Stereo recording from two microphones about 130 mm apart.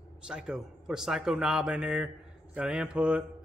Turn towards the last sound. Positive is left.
turn(degrees=-10)  # may be behind; listen again after turning